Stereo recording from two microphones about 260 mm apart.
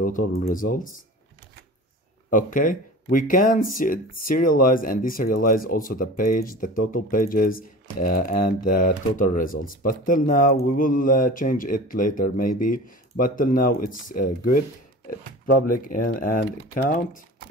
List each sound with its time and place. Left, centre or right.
0.0 s speech: left
2.2 s speech: left
8.0 s speech: left
8.6 s speech: left
15.7 s speech: left